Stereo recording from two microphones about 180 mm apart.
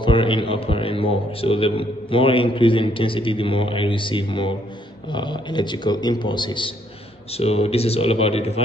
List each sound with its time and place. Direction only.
0.0 s a man's voice: 30° left (ahead or behind)